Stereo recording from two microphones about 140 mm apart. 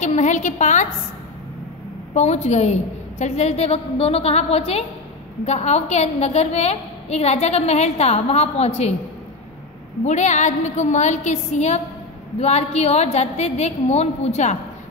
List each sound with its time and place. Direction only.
0.0 s a woman's voice: 60° left (ahead or behind)
2.1 s a woman's voice: 50° left (ahead or behind)
10.0 s a woman's voice: 55° left (ahead or behind)